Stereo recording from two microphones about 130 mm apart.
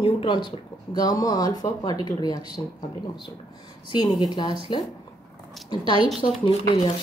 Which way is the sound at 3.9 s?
35° left (ahead or behind).